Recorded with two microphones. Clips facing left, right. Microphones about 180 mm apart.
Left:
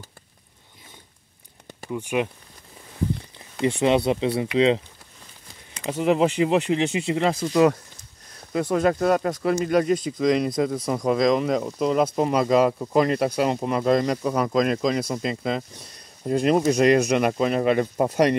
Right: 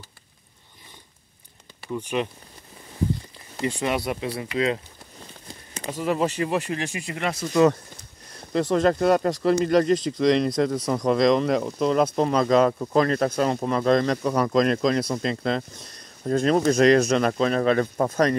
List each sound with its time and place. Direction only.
1.9 s speech: 10° left (ahead or behind)
3.6 s speech: 20° left (ahead or behind)
5.9 s speech: 20° left (ahead or behind)
8.5 s speech: 5° left (ahead or behind)
16.3 s speech: 15° left (ahead or behind)